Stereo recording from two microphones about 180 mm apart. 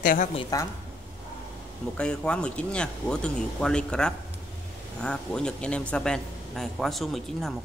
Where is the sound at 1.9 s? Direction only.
5° left (ahead or behind).